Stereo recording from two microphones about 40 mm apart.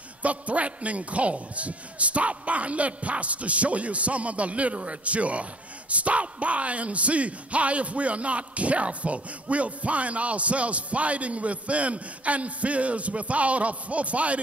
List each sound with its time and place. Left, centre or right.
0.2 s a man's voice: right